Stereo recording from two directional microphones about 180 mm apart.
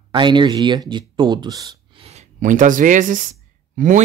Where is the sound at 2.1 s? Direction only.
40° right (ahead or behind).